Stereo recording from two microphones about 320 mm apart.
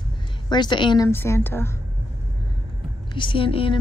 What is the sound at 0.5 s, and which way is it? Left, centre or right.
A woman's voice, centre.